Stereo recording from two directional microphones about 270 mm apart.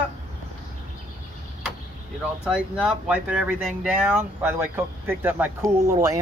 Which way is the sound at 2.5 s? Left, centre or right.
Centre.